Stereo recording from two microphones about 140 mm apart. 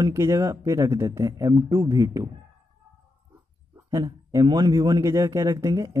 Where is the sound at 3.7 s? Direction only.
25° right (ahead or behind).